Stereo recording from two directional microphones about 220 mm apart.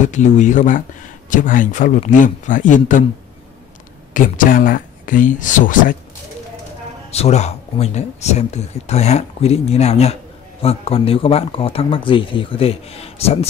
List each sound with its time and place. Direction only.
0.0 s speech: 35° left (ahead or behind)
4.1 s speech: 40° left (ahead or behind)
7.1 s speech: 30° left (ahead or behind)